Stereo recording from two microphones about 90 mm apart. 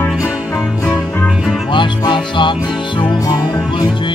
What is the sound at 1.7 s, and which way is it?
Music, 60° left (ahead or behind).